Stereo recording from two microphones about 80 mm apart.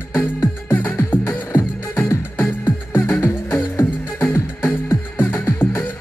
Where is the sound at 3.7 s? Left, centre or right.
Left.